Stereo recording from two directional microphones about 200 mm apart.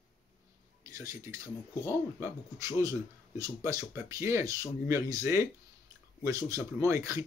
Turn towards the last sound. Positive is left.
turn(degrees=-15)  # may be behind; listen again after turning